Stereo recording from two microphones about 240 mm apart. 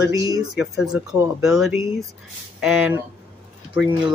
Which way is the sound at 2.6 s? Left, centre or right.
Centre.